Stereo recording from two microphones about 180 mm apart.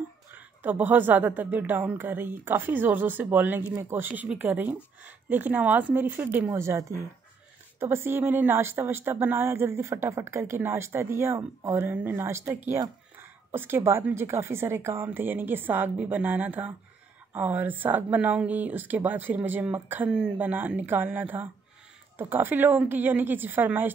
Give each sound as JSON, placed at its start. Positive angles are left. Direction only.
{"t": 0.3, "sound": "speech", "side_deg": -10}